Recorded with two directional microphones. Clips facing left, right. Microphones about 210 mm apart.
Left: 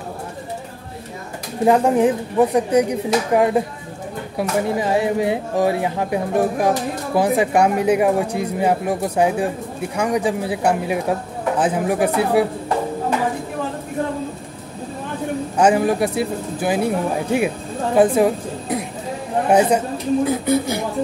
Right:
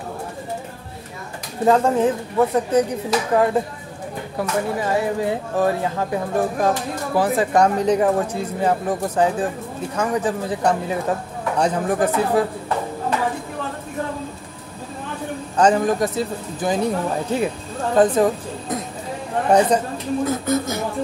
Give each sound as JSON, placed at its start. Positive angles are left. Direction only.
{"t": 1.6, "sound": "speech", "side_deg": 15}
{"t": 15.5, "sound": "a woman's voice", "side_deg": 10}